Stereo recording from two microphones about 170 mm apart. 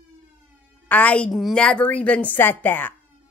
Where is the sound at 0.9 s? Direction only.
10° left (ahead or behind).